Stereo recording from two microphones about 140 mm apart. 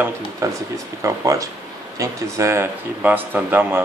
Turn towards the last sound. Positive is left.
turn(degrees=-15)  # may be behind; listen again after turning